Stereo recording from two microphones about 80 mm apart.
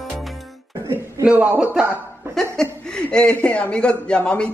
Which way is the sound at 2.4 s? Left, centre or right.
Centre.